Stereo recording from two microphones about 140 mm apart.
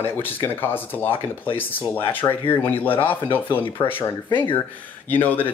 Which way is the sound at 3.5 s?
40° left (ahead or behind).